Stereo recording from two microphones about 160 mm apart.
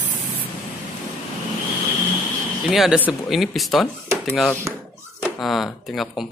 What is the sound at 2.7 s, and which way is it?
Speech, centre (ahead or behind).